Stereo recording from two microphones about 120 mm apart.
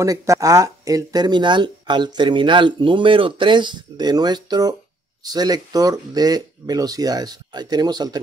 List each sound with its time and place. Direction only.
0.0 s speech: 25° right (ahead or behind)